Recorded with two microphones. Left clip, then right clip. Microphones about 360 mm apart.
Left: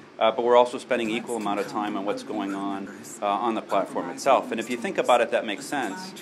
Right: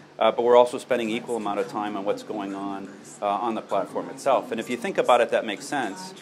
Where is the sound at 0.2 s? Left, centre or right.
Right.